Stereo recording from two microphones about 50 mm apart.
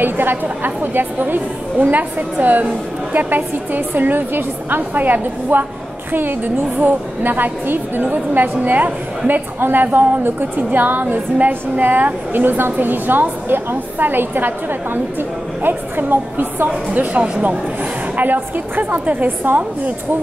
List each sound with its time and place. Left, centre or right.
0.0 s a woman's voice: right
16.6 s a woman's voice: right